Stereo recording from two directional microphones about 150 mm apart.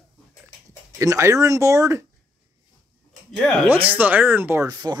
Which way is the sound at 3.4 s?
5° left (ahead or behind).